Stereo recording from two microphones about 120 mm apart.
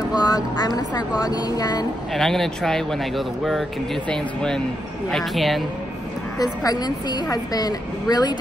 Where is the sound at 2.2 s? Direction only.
5° left (ahead or behind).